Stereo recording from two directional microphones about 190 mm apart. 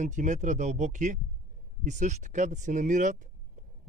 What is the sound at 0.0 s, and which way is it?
Speech, 40° right (ahead or behind).